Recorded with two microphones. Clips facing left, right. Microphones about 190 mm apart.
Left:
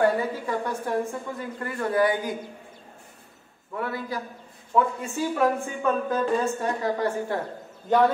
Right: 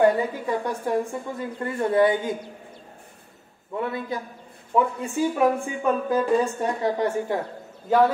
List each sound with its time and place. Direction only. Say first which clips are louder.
0.0 s a woman's voice: right 3 dB; 15° right (ahead or behind)
3.7 s a man's voice: right 2 dB; 20° right (ahead or behind)
7.9 s a man's voice: right 2 dB; 5° right (ahead or behind)